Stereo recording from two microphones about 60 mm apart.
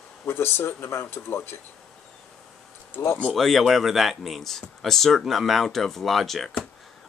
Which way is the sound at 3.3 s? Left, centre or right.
Centre.